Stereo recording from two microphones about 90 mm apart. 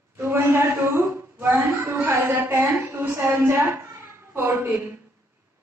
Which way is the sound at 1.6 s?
35° right (ahead or behind).